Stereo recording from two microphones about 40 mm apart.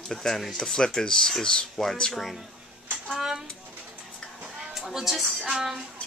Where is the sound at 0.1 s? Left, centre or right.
Centre.